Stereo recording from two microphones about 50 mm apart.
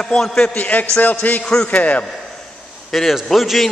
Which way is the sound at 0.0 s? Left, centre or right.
Centre.